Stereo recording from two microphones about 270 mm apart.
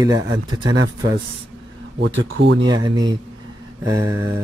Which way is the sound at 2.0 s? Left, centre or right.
Right.